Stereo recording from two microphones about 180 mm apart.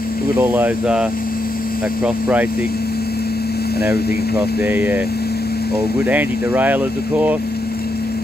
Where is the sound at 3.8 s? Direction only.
60° left (ahead or behind).